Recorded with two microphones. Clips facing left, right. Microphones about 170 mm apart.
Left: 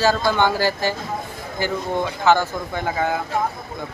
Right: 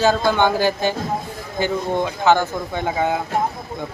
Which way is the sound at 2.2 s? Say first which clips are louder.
Right 1 dB; 15° right (ahead or behind).